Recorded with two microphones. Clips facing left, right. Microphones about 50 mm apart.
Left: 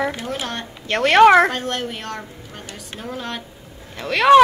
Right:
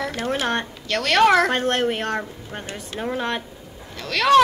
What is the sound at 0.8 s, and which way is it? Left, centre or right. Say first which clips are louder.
Speech: left 6 dB; left.